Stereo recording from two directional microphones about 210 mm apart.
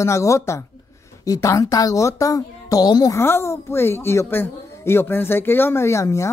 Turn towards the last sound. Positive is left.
turn(degrees=15)  # may be behind; listen again after turning